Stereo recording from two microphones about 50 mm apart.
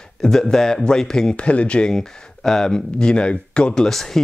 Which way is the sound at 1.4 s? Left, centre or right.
Left.